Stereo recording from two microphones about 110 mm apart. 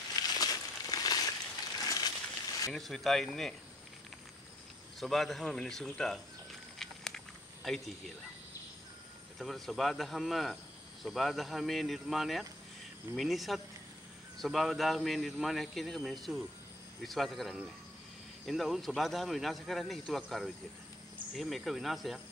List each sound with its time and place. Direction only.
0.1 s a sound: 35° left (ahead or behind)
2.7 s speech: centre (ahead or behind)
5.0 s speech: centre (ahead or behind)
6.8 s a sound: 5° left (ahead or behind)
7.6 s speech: centre (ahead or behind)
9.4 s speech: centre (ahead or behind)